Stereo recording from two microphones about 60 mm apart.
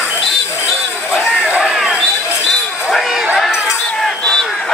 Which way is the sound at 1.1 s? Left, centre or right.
Centre.